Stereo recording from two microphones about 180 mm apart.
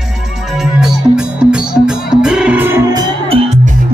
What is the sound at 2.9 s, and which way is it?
Music, 25° right (ahead or behind).